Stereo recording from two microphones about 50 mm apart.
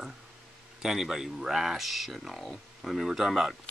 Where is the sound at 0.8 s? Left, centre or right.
Centre.